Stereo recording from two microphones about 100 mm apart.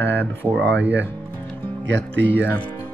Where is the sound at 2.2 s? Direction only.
20° left (ahead or behind).